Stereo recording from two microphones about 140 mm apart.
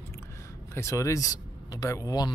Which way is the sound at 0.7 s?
20° left (ahead or behind).